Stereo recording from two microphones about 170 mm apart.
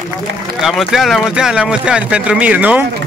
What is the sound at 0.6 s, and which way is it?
Speech, centre (ahead or behind).